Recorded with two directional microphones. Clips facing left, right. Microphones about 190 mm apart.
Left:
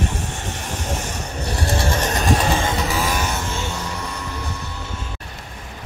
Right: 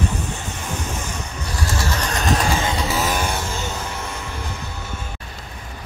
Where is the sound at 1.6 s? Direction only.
30° left (ahead or behind).